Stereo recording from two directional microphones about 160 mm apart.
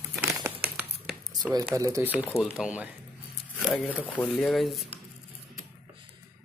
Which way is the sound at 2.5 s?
5° right (ahead or behind).